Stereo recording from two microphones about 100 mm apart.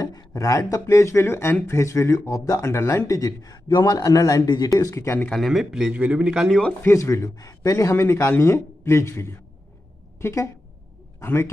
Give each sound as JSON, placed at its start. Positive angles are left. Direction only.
{"t": 0.0, "sound": "speech", "side_deg": 40}
{"t": 5.3, "sound": "speech", "side_deg": 0}
{"t": 6.9, "sound": "a man's voice", "side_deg": 30}